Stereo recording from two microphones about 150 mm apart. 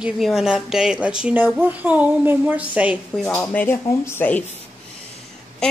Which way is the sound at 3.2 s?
5° left (ahead or behind).